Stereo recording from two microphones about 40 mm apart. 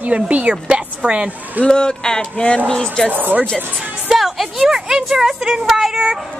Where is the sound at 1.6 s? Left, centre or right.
Left.